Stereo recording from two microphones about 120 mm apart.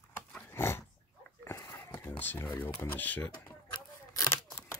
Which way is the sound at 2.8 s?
15° left (ahead or behind).